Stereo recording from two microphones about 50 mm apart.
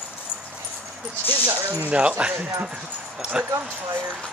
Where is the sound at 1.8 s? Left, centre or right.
Right.